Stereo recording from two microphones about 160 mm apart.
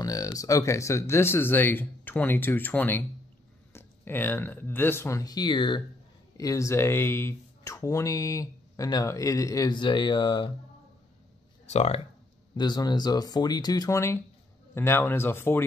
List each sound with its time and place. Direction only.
0.0 s speech: 20° left (ahead or behind)
11.7 s speech: 40° left (ahead or behind)
12.5 s speech: 25° left (ahead or behind)